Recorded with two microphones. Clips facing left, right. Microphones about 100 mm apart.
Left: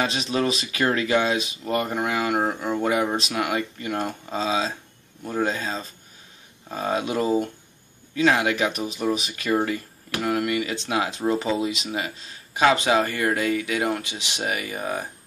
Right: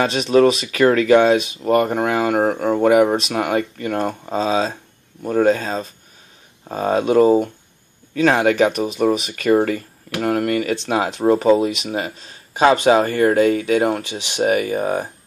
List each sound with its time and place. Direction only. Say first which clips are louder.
0.0 s speech: right 10 dB; 60° right (ahead or behind)
3.3 s speech: right 5 dB; 45° right (ahead or behind)
12.5 s speech: right 6 dB; 35° right (ahead or behind)